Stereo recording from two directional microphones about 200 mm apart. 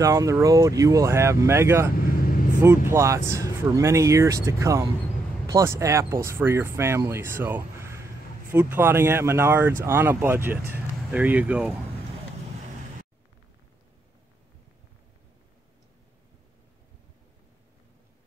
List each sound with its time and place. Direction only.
0.0 s speech: 15° right (ahead or behind)